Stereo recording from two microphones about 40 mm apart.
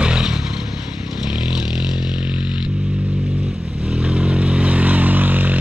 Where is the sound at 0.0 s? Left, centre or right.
Right.